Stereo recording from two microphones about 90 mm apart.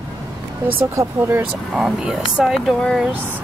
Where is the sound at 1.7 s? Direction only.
5° right (ahead or behind).